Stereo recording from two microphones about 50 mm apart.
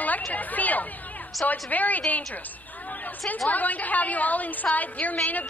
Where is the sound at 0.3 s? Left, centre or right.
Left.